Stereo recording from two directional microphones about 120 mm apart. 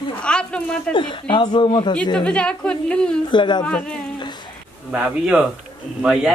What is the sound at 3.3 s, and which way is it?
Speech, 40° left (ahead or behind).